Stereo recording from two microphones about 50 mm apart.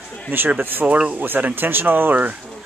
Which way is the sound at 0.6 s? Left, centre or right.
Right.